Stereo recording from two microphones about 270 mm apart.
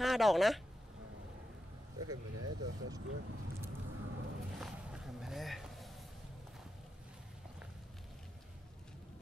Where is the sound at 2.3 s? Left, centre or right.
Right.